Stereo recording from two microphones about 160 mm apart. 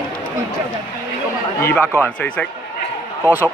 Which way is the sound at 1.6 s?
15° left (ahead or behind).